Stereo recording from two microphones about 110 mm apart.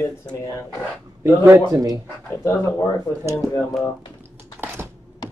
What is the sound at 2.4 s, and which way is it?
Speech, 25° left (ahead or behind).